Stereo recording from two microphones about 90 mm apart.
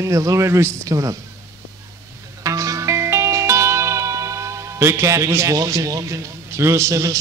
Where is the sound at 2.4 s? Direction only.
40° right (ahead or behind).